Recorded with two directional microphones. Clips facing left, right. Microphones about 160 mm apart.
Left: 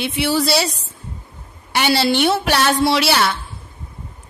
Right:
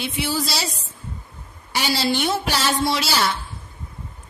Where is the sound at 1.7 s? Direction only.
65° left (ahead or behind).